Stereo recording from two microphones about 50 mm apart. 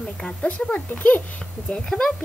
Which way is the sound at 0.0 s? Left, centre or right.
Left.